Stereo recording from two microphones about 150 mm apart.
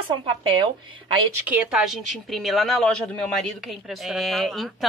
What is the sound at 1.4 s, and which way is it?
Speech, 5° right (ahead or behind).